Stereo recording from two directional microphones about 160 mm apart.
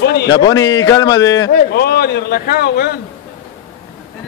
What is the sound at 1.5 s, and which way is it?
A man's voice, 85° left.